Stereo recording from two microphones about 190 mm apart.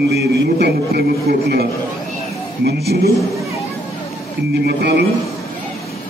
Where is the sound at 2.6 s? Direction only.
55° right (ahead or behind).